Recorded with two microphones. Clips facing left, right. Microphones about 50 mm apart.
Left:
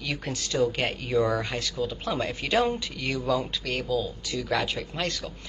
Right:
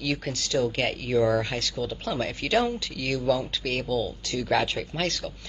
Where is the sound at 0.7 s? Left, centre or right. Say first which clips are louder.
Right 1 dB; centre.